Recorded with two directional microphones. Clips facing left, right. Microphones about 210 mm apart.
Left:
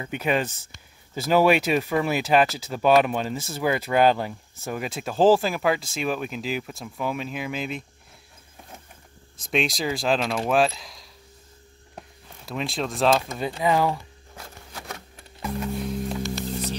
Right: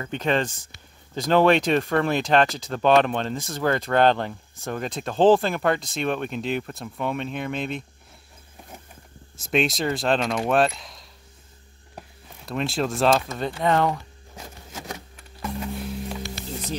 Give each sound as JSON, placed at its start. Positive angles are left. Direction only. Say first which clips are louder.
{"t": 0.0, "sound": "speech", "louder": "right 1 dB", "side_deg": 10}
{"t": 9.4, "sound": "speech", "louder": "right 2 dB", "side_deg": 0}
{"t": 12.4, "sound": "speech", "louder": "right 3 dB", "side_deg": 0}
{"t": 13.3, "sound": "speech", "louder": "even", "side_deg": 10}
{"t": 14.3, "sound": "a sound", "louder": "right 2 dB", "side_deg": -20}
{"t": 15.4, "sound": "music", "louder": "left 2 dB", "side_deg": 0}